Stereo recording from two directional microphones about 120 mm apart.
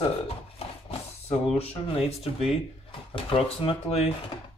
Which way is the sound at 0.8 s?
55° left (ahead or behind).